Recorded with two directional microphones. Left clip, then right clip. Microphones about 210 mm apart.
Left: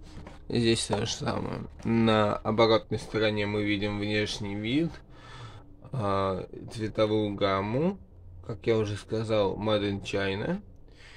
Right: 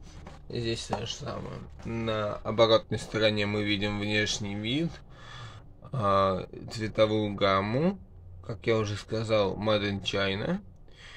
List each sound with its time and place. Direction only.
0.5 s speech: 35° left (ahead or behind)
2.5 s speech: 10° left (ahead or behind)